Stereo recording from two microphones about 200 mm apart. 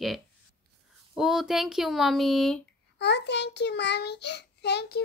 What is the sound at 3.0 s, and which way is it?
A child's voice, 60° left (ahead or behind).